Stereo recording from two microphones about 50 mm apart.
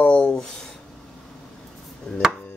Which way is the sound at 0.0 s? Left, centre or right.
Left.